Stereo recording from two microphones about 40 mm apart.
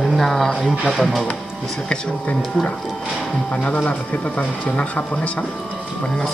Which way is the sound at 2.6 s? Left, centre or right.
Centre.